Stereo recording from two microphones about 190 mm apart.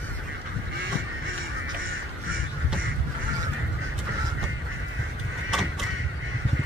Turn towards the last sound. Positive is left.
turn(degrees=0)  # may be behind; listen again after turning